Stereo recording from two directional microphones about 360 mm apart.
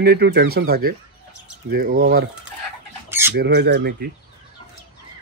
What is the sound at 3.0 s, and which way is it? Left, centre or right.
Squawk, centre.